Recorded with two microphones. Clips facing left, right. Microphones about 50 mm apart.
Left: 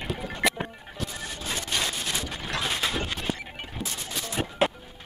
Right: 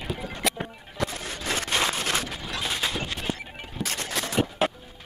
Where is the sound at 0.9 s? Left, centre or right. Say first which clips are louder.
Right 5 dB; right.